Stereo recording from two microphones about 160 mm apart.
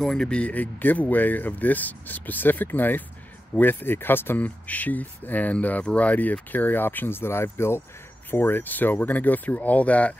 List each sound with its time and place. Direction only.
0.0 s speech: 5° left (ahead or behind)